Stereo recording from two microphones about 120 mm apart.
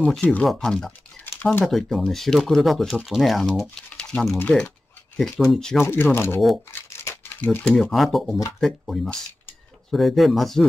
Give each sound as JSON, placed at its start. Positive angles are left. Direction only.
{"t": 0.0, "sound": "speech", "side_deg": 10}
{"t": 1.2, "sound": "a sound", "side_deg": 15}
{"t": 1.6, "sound": "speech", "side_deg": 0}
{"t": 5.9, "sound": "speech", "side_deg": 20}
{"t": 6.7, "sound": "a sound", "side_deg": 20}
{"t": 7.6, "sound": "speech", "side_deg": 0}